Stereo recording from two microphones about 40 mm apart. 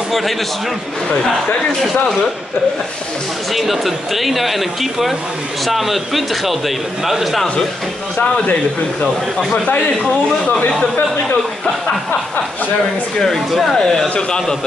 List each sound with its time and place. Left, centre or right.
3.5 s speech: centre
9.0 s speech: centre
13.2 s speech: centre
14.0 s speech: left